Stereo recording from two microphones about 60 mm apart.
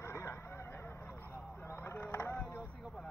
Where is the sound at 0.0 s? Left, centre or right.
Left.